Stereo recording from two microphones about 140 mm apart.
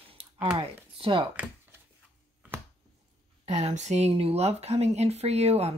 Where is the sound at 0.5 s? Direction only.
40° right (ahead or behind).